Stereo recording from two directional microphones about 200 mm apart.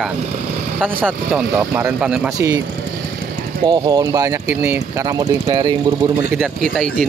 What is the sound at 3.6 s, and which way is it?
Speech, 20° right (ahead or behind).